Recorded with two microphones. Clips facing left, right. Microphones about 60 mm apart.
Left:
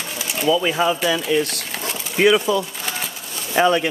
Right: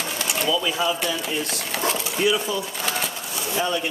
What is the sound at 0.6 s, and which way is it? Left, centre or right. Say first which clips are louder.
Speech: left 4 dB; left.